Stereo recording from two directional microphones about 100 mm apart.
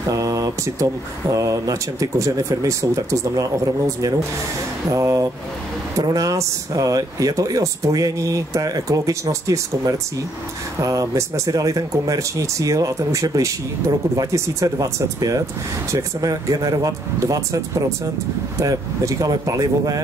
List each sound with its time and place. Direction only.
0.1 s speech: 35° right (ahead or behind)